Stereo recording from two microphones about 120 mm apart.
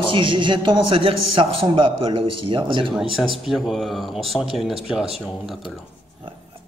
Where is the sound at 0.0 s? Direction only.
45° right (ahead or behind).